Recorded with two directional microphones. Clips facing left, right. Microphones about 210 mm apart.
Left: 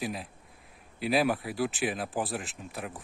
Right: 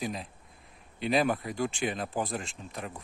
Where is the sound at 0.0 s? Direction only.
5° left (ahead or behind).